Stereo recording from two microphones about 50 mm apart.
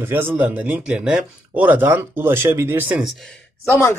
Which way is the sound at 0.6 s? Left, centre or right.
Right.